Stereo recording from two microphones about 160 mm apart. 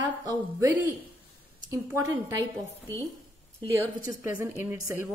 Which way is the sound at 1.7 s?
15° right (ahead or behind).